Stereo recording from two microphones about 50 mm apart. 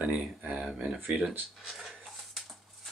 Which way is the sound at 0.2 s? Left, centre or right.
Right.